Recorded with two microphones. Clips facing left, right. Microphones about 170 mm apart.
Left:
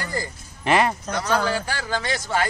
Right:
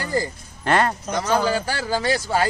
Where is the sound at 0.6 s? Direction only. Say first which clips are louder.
Even; centre (ahead or behind).